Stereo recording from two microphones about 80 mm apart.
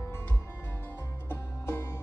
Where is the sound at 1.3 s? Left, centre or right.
Left.